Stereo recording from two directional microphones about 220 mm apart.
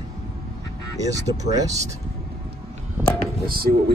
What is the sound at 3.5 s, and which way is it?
Speech, 45° right (ahead or behind).